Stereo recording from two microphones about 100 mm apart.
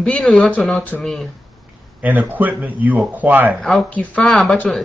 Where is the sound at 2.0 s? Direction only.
15° right (ahead or behind).